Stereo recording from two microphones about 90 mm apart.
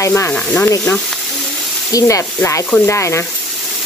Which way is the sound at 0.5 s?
25° left (ahead or behind).